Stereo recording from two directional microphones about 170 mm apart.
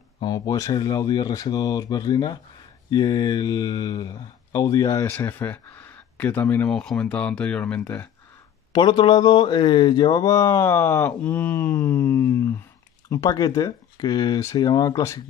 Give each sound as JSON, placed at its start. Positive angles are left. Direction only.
{"t": 0.2, "sound": "speech", "side_deg": 20}
{"t": 8.7, "sound": "speech", "side_deg": 25}